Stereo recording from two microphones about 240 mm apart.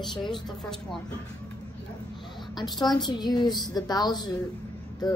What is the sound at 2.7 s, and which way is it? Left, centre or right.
A woman's voice, centre.